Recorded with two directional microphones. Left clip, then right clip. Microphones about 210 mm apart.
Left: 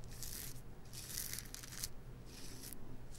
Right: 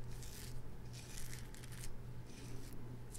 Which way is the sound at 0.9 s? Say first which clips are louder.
Left 7 dB; 20° left (ahead or behind).